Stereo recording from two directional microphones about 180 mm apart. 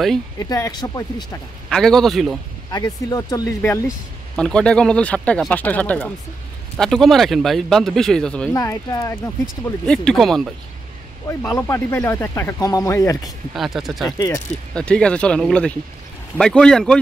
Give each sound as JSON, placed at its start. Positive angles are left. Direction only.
{"t": 0.4, "sound": "speech", "side_deg": 20}
{"t": 1.7, "sound": "speech", "side_deg": 5}
{"t": 2.7, "sound": "speech", "side_deg": 20}
{"t": 4.4, "sound": "speech", "side_deg": 5}
{"t": 8.5, "sound": "speech", "side_deg": 20}
{"t": 9.8, "sound": "speech", "side_deg": 5}
{"t": 11.5, "sound": "speech", "side_deg": 15}
{"t": 13.5, "sound": "speech", "side_deg": 0}
{"t": 14.1, "sound": "speech", "side_deg": 20}
{"t": 14.7, "sound": "speech", "side_deg": 5}